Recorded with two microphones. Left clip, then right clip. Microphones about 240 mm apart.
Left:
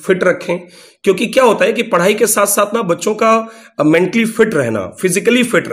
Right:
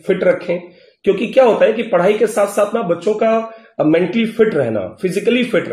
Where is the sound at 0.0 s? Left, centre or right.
Left.